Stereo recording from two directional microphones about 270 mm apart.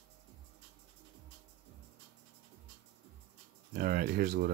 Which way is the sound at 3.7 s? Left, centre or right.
Right.